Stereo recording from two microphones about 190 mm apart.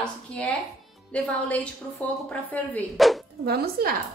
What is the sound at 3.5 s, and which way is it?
Speech, 55° right (ahead or behind).